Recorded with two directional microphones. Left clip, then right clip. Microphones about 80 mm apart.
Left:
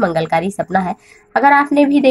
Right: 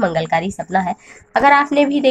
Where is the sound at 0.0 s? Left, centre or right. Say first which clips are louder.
Left 2 dB; left.